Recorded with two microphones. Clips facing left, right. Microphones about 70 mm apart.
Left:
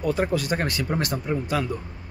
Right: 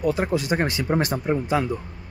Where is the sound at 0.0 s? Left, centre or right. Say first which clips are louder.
Right 1 dB; centre.